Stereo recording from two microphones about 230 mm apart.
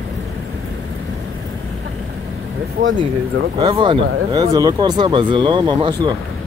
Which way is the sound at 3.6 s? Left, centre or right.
Right.